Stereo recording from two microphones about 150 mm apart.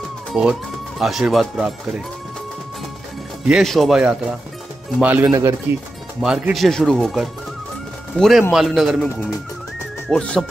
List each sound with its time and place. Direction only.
0.3 s speech: 5° right (ahead or behind)
3.4 s speech: centre (ahead or behind)
5.2 s speech: 20° right (ahead or behind)
6.2 s speech: 5° right (ahead or behind)